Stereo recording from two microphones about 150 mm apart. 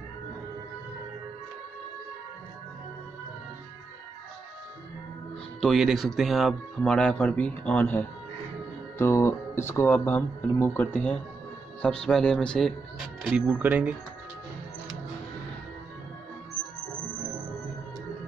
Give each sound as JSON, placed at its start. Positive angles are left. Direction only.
{"t": 5.6, "sound": "speech", "side_deg": 0}
{"t": 13.2, "sound": "speech", "side_deg": -10}